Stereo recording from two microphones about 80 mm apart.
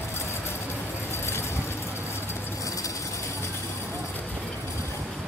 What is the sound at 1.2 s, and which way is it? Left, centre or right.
Vehicle, left.